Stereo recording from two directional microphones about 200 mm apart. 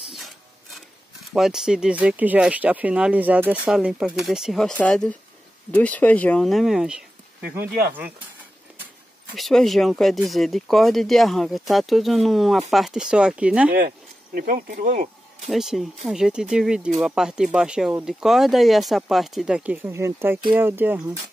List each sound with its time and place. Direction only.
1.3 s speech: centre (ahead or behind)
9.3 s speech: centre (ahead or behind)
13.7 s speech: 45° right (ahead or behind)
15.4 s speech: centre (ahead or behind)